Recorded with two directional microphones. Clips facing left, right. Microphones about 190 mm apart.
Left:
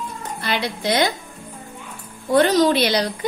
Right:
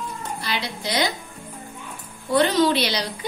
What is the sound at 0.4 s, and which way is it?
Speech, 55° left (ahead or behind).